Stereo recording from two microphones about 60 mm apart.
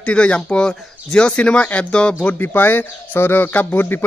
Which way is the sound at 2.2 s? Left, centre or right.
Left.